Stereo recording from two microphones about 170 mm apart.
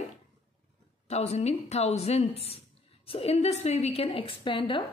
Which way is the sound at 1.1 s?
40° left (ahead or behind).